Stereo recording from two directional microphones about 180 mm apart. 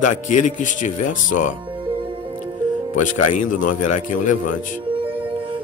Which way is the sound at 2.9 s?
45° left (ahead or behind).